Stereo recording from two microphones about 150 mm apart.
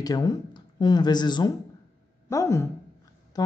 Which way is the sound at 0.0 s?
25° left (ahead or behind).